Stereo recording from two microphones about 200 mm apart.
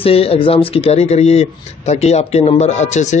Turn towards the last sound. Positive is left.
turn(degrees=35)  # may be behind; listen again after turning